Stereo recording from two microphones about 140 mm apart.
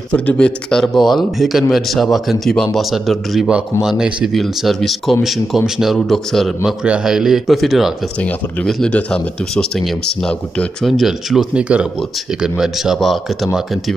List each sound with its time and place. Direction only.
0.1 s a man's voice: 10° left (ahead or behind)
8.2 s a man's voice: 10° left (ahead or behind)